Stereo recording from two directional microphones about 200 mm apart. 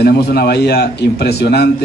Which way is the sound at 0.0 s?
55° left (ahead or behind).